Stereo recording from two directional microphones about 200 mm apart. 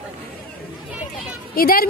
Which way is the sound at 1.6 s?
45° left (ahead or behind).